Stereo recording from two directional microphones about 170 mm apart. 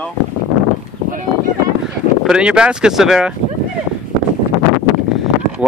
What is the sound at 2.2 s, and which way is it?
Speech, 5° right (ahead or behind).